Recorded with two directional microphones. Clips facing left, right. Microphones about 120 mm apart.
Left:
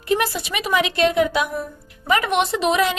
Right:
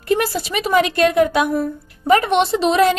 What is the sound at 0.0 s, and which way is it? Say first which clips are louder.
A woman's voice: right 2 dB; 40° right (ahead or behind).